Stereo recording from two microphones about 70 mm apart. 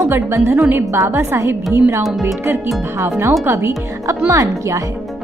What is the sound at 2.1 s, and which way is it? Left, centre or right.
Speech, centre.